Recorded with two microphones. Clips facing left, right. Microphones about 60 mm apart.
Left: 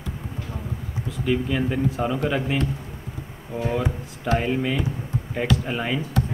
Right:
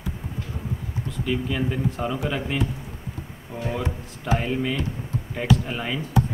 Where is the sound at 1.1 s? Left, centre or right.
Centre.